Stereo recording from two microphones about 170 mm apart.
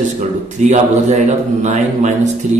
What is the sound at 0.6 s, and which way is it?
Speech, 45° right (ahead or behind).